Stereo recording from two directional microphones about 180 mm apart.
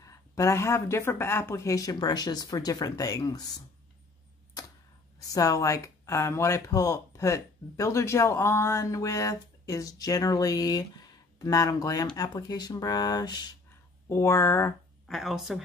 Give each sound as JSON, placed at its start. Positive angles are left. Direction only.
{"t": 0.0, "sound": "speech", "side_deg": 15}
{"t": 5.2, "sound": "speech", "side_deg": 20}
{"t": 15.0, "sound": "speech", "side_deg": 0}